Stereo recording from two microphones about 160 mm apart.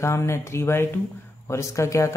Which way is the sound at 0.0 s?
15° left (ahead or behind).